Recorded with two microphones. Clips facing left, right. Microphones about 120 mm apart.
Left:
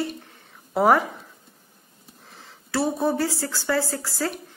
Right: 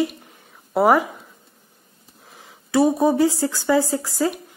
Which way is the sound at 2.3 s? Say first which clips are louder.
Right 7 dB; 15° right (ahead or behind).